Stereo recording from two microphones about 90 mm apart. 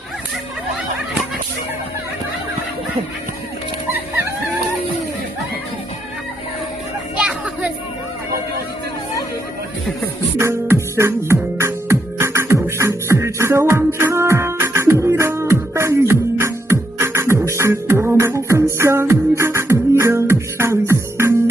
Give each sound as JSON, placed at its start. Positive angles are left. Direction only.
{"t": 7.2, "sound": "music", "side_deg": -10}
{"t": 10.3, "sound": "music", "side_deg": -30}